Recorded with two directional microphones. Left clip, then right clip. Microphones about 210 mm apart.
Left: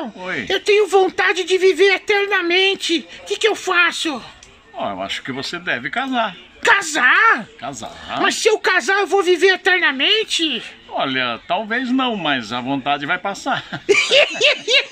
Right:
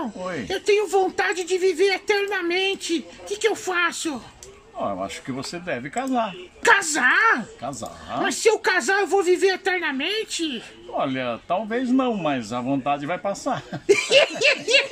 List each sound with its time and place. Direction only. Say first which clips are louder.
0.5 s speech: left 6 dB; 35° left (ahead or behind)
4.8 s speech: left 4 dB; 15° right (ahead or behind)
6.6 s speech: left 3 dB; 35° left (ahead or behind)
11.0 s speech: left 5 dB; 15° right (ahead or behind)
13.8 s speech: left 3 dB; 35° left (ahead or behind)